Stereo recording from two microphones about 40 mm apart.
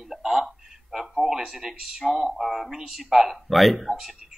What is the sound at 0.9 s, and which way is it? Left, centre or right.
Speech, centre.